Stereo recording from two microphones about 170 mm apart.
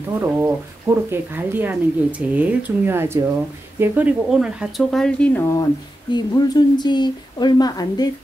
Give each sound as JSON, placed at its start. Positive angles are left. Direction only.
{"t": 0.2, "sound": "speech", "side_deg": -15}
{"t": 6.1, "sound": "a woman's voice", "side_deg": 25}